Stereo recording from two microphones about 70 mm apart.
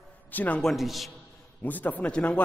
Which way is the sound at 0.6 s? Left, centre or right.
Centre.